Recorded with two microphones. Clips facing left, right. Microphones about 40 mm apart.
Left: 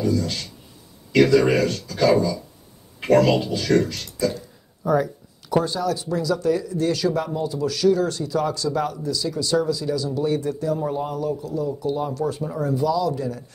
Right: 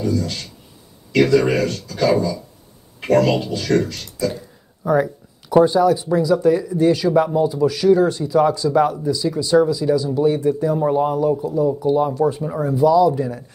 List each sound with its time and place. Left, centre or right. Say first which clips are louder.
0.0 s speech: right 1 dB; centre
4.8 s speech: right 3 dB; centre